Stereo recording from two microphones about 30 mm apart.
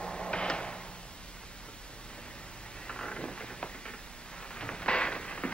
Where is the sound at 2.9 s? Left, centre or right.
Left.